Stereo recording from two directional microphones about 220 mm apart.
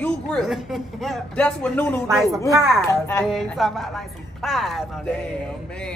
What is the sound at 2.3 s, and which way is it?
Speech, 15° right (ahead or behind).